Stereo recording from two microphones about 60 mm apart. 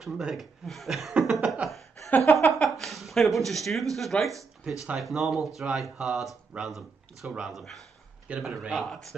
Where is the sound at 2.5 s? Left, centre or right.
Centre.